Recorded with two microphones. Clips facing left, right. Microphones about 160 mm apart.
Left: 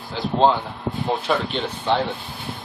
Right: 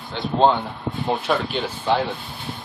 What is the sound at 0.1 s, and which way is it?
Speech, centre (ahead or behind).